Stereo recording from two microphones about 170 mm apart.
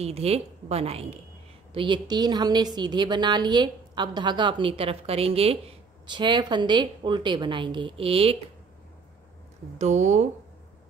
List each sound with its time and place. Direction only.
0.0 s a woman's voice: 35° right (ahead or behind)
9.8 s speech: 45° right (ahead or behind)